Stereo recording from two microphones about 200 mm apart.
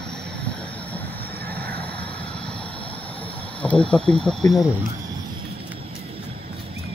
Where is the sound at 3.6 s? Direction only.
5° left (ahead or behind).